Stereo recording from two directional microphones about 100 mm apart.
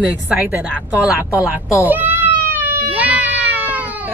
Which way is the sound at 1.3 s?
30° left (ahead or behind).